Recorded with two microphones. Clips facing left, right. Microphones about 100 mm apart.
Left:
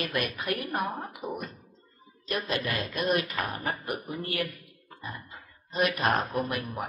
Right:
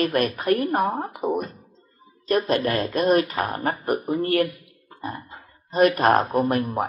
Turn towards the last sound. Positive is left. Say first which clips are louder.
# right 9 dB
turn(degrees=-40)  # may be behind; listen again after turning